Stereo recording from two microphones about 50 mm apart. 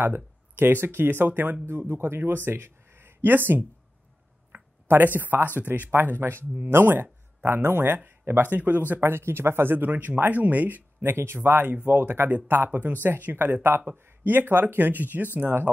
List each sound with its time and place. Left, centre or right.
0.0 s speech: right
4.8 s speech: right
9.0 s speech: right
11.0 s speech: right